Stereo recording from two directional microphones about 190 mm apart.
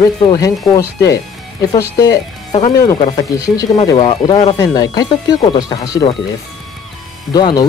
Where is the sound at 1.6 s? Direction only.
20° left (ahead or behind).